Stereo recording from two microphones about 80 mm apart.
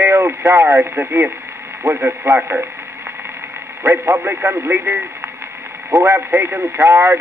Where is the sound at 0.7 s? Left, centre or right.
Right.